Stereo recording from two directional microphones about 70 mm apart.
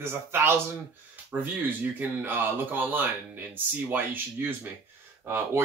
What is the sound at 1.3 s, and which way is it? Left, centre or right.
Speech, centre.